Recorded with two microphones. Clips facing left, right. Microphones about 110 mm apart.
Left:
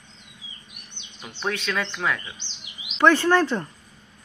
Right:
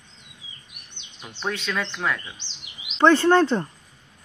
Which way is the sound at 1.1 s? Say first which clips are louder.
Left 1 dB; centre (ahead or behind).